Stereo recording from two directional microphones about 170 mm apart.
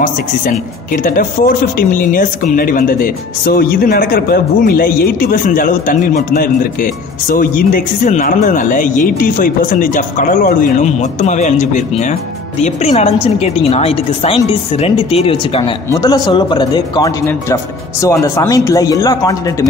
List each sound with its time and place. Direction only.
1.0 s a woman's voice: 55° left (ahead or behind); by 15.6 s 35° left (ahead or behind)
15.9 s speech: 20° left (ahead or behind)